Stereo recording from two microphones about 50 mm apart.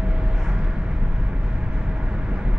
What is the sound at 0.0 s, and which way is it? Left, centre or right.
Vehicle, centre.